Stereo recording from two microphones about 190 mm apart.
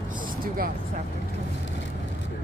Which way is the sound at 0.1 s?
50° right (ahead or behind).